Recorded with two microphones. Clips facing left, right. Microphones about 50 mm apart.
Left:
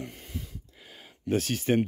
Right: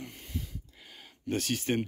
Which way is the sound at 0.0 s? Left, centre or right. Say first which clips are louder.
Left 2 dB; centre.